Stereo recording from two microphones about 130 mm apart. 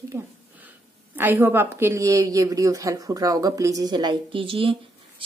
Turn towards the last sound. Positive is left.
turn(degrees=-45)  # may be behind; listen again after turning